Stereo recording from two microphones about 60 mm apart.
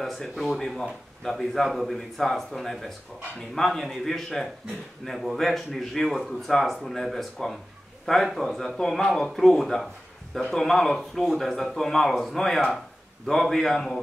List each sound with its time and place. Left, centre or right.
0.0 s a man's voice: centre